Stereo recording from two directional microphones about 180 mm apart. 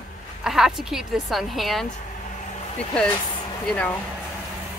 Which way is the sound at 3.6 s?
5° left (ahead or behind).